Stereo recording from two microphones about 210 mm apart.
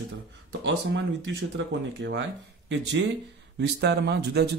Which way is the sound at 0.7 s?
55° right (ahead or behind).